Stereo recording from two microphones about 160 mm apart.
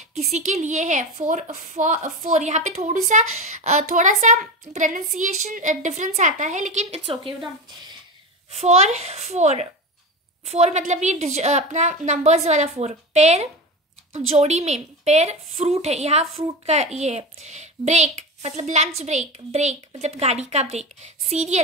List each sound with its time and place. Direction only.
0.3 s a woman's voice: 45° right (ahead or behind)
8.5 s a woman's voice: 40° right (ahead or behind)